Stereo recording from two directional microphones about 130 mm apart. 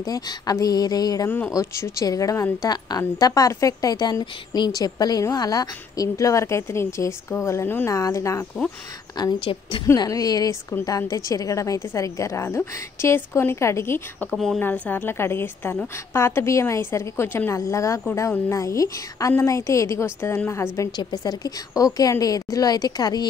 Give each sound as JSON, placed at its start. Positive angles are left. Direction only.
{"t": 0.0, "sound": "a woman's voice", "side_deg": 30}
{"t": 9.1, "sound": "a woman's voice", "side_deg": 35}
{"t": 9.8, "sound": "a woman's voice", "side_deg": 25}
{"t": 14.3, "sound": "speech", "side_deg": 0}
{"t": 14.6, "sound": "a woman's voice", "side_deg": 15}